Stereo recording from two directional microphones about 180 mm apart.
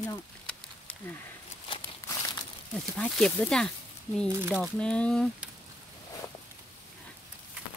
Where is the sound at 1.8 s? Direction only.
15° left (ahead or behind).